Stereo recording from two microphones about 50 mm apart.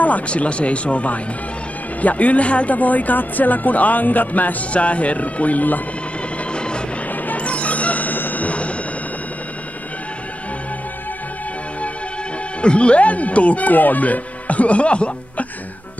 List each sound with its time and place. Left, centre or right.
0.0 s speech: left
6.5 s music: centre
7.1 s music: left
12.6 s speech: left